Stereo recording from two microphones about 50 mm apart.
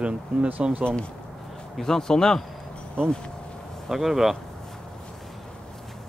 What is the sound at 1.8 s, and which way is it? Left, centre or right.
Speech, centre.